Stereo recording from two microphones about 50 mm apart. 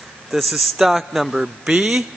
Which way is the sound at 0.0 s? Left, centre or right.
Centre.